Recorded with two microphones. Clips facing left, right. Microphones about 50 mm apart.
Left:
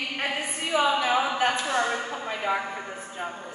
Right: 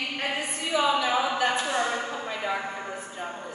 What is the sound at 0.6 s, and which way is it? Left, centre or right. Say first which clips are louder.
Speech: left 2 dB; left.